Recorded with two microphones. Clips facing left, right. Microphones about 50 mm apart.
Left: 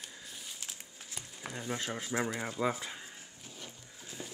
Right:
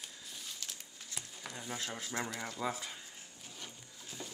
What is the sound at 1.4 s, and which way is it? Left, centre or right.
Speech, centre.